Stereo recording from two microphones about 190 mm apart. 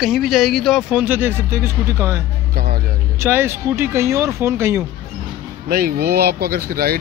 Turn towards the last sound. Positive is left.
turn(degrees=-50)  # may be behind; listen again after turning